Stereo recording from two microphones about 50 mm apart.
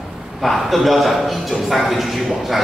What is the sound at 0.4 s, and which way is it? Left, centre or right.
A man's voice, centre.